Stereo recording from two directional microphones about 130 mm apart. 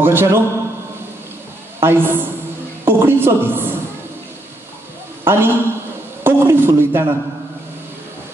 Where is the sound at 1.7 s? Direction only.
15° right (ahead or behind).